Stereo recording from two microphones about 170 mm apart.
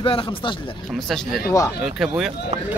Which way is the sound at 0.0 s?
35° left (ahead or behind).